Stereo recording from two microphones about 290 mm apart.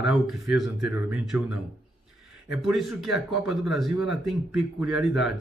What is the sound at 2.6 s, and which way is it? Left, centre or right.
Speech, centre.